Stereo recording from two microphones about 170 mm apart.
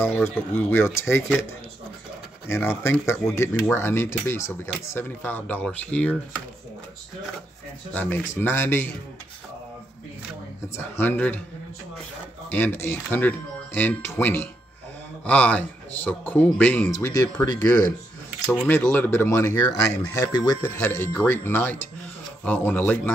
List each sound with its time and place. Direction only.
0.0 s speech: 15° left (ahead or behind)
2.4 s speech: 15° left (ahead or behind)
7.9 s speech: 10° left (ahead or behind)
10.8 s speech: 10° left (ahead or behind)
12.5 s speech: 10° left (ahead or behind)